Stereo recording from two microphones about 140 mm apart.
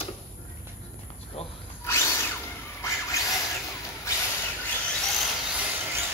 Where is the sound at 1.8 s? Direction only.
20° left (ahead or behind).